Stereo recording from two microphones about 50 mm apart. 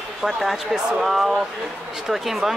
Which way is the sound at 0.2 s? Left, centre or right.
Centre.